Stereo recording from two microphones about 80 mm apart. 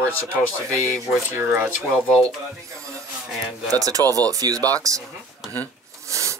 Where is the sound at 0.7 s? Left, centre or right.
Right.